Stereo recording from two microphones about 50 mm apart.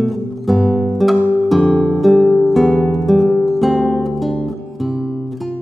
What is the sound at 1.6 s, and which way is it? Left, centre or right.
Music, centre.